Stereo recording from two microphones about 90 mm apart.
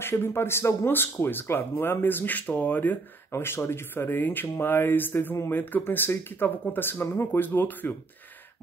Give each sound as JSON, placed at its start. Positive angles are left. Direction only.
{"t": 0.0, "sound": "speech", "side_deg": 25}